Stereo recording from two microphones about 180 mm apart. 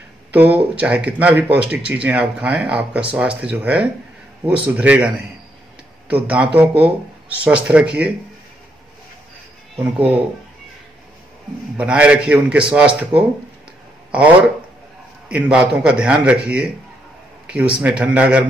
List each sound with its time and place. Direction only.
0.3 s speech: 10° right (ahead or behind)
9.8 s speech: 10° right (ahead or behind)
11.7 s speech: 5° right (ahead or behind)
15.2 s speech: 5° right (ahead or behind)